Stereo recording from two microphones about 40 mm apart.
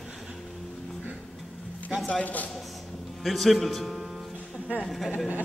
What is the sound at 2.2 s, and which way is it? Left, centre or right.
Speech, left.